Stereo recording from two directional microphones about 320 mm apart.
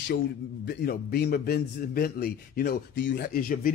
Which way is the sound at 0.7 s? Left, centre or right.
Left.